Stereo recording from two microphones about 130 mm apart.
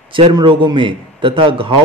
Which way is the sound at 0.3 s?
35° right (ahead or behind).